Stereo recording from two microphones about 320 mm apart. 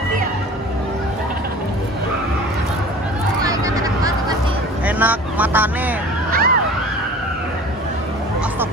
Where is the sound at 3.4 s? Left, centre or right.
Centre.